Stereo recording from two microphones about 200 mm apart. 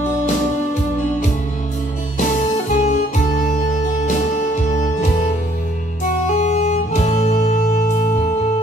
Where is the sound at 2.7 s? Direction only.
35° left (ahead or behind).